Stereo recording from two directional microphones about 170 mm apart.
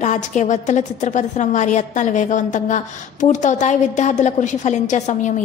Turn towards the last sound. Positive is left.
turn(degrees=45)  # may be behind; listen again after turning